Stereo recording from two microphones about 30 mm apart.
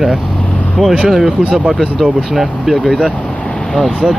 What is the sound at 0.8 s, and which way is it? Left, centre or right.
Speech, right.